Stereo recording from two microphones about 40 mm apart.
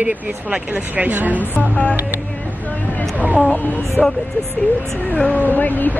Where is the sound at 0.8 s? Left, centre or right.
Right.